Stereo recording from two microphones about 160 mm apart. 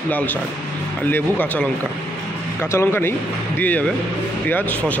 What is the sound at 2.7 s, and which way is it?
A man's voice, 15° left (ahead or behind).